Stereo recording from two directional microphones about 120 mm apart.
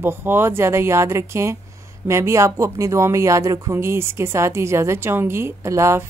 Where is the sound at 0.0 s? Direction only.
20° right (ahead or behind).